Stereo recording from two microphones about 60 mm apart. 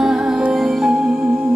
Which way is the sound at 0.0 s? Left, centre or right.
Centre.